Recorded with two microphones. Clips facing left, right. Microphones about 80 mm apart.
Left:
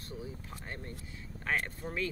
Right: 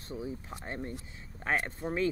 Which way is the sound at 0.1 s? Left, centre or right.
Right.